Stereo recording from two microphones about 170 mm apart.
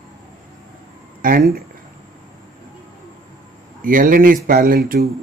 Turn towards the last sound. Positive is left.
turn(degrees=-60)  # may be behind; listen again after turning